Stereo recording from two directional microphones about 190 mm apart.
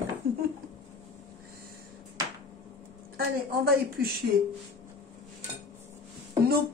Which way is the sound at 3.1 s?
50° right (ahead or behind).